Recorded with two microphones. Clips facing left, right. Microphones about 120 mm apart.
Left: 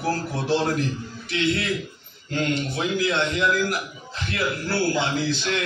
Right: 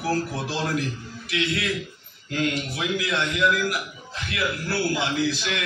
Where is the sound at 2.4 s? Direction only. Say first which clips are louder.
Left 2 dB; 30° left (ahead or behind).